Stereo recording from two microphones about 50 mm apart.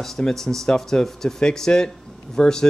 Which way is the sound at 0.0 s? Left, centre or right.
Centre.